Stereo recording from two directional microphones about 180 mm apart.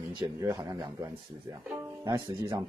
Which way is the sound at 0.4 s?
20° right (ahead or behind).